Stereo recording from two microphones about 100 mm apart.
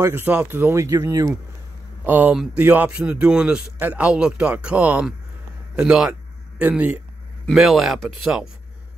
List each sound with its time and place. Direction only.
0.0 s speech: 20° right (ahead or behind)
2.0 s speech: 20° right (ahead or behind)
7.5 s speech: centre (ahead or behind)